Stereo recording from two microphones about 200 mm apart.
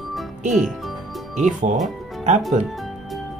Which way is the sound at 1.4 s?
40° right (ahead or behind).